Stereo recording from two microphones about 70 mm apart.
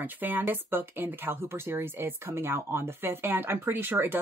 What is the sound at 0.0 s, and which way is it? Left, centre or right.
Speech, right.